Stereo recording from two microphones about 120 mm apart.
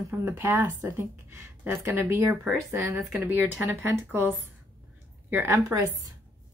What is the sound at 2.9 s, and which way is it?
Speech, 5° right (ahead or behind).